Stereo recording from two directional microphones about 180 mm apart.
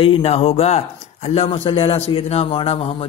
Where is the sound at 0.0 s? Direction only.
30° left (ahead or behind).